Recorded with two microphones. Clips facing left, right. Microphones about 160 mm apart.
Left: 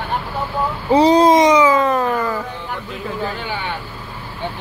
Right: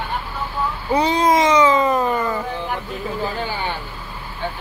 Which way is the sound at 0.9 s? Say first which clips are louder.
Left 7 dB; 35° left (ahead or behind).